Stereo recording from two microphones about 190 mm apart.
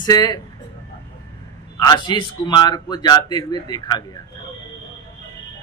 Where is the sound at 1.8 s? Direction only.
20° left (ahead or behind).